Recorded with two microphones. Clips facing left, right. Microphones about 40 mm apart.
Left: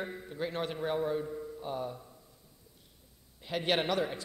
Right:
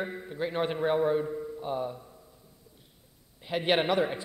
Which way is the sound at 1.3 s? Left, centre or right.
Centre.